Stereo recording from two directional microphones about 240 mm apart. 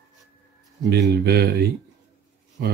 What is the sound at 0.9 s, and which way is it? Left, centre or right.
Speech, right.